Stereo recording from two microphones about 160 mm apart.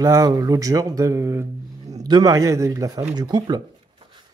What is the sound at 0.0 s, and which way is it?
Speech, 20° right (ahead or behind).